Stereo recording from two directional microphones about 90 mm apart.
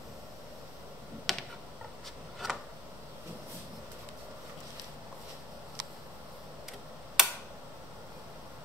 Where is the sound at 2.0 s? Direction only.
5° right (ahead or behind).